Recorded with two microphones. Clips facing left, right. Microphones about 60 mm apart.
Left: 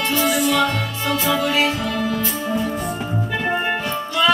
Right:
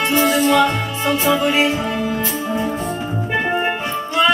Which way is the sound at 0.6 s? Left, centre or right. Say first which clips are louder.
Right 3 dB; right.